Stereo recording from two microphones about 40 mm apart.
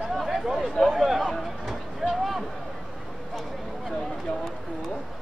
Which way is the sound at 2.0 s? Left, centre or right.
Centre.